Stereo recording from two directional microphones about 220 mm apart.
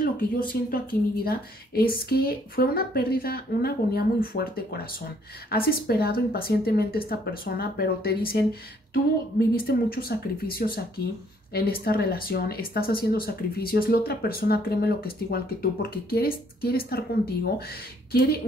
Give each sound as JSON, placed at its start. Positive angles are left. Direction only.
{"t": 0.0, "sound": "speech", "side_deg": 40}
{"t": 9.4, "sound": "speech", "side_deg": 45}